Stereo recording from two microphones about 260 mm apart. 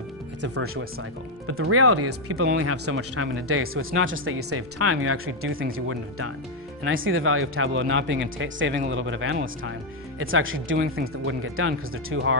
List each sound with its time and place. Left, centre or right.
0.4 s speech: right